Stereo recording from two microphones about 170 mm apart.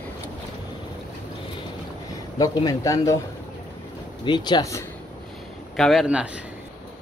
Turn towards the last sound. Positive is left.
turn(degrees=-5)  # may be behind; listen again after turning